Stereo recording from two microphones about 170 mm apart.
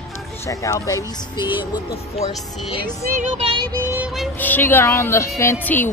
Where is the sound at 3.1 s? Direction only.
45° right (ahead or behind).